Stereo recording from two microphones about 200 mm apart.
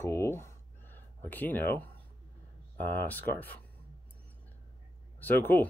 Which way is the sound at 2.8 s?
10° left (ahead or behind).